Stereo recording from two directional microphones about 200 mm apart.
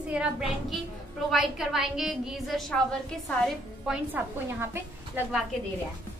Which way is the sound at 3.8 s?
10° right (ahead or behind).